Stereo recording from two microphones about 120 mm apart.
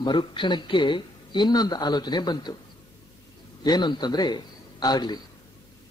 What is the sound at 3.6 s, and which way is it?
A man's voice, 35° left (ahead or behind).